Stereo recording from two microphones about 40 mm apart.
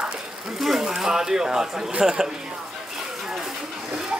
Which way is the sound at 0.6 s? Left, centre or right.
Centre.